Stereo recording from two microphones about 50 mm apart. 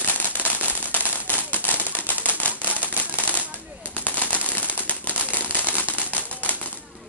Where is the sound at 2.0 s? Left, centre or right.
Left.